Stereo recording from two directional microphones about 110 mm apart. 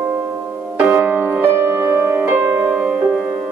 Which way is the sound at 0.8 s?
15° right (ahead or behind).